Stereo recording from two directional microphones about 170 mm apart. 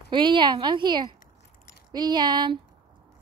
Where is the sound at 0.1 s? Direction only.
30° right (ahead or behind).